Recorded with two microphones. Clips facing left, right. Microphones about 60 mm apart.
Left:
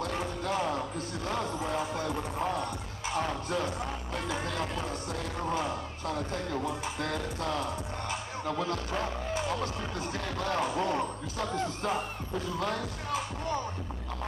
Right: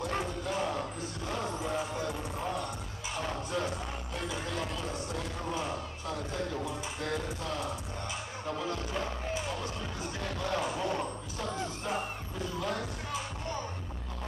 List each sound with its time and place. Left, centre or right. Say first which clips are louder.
0.0 s music: left 1 dB; left
3.2 s music: left 2 dB; left
9.3 s speech: left 4 dB; left